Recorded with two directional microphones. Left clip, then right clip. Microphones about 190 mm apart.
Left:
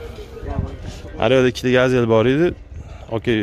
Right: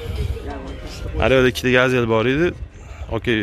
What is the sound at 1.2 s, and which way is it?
A man's voice, 10° left (ahead or behind).